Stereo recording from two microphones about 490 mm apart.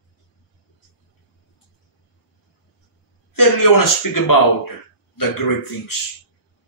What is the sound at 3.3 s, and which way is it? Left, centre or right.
A man's voice, left.